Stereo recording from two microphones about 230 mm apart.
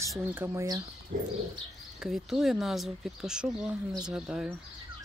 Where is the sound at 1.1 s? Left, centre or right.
Right.